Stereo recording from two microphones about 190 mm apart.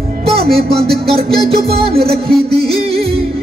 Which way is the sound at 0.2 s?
30° right (ahead or behind).